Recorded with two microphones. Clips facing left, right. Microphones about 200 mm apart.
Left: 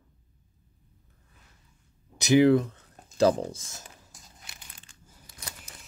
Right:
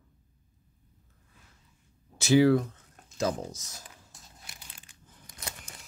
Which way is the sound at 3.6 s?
50° left (ahead or behind).